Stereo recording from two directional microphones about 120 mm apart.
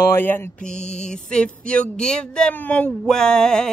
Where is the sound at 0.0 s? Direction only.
20° left (ahead or behind).